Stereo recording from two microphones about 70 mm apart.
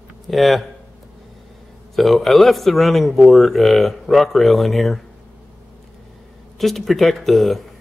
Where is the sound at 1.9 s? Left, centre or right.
Centre.